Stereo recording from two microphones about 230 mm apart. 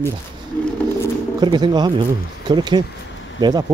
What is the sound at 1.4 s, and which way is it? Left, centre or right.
Speech, centre.